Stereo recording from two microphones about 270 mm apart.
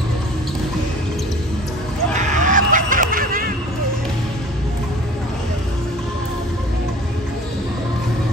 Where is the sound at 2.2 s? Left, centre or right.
Right.